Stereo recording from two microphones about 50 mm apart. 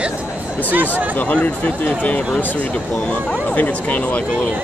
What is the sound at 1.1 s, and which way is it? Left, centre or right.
Speech, left.